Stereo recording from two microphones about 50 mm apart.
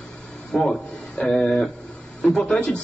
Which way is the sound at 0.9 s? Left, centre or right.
Left.